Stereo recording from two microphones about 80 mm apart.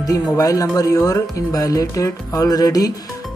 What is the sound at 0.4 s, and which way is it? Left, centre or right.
Speech, left.